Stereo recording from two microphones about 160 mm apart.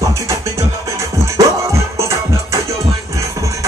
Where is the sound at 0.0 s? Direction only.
20° right (ahead or behind).